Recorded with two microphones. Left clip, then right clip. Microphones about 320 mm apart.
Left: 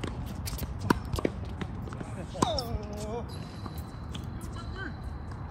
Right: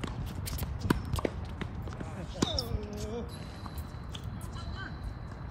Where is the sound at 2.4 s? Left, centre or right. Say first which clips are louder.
Left 4 dB; centre.